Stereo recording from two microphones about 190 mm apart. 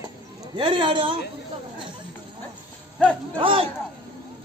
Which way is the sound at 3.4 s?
30° right (ahead or behind).